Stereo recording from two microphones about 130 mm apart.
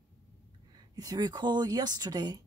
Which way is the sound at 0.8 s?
30° right (ahead or behind).